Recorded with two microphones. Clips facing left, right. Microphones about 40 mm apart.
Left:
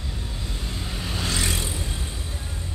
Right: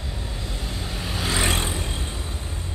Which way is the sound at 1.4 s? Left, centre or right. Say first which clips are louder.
Right 4 dB; right.